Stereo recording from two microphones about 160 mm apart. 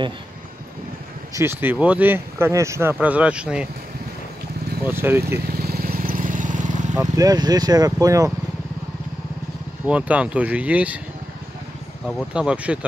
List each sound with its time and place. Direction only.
1.3 s speech: 15° right (ahead or behind)
4.8 s speech: 15° right (ahead or behind)
5.5 s vehicle: 70° right (ahead or behind); by 7.0 s 50° right (ahead or behind)
7.0 s speech: 20° right (ahead or behind)
9.8 s speech: 10° right (ahead or behind)
12.4 s speech: 5° right (ahead or behind)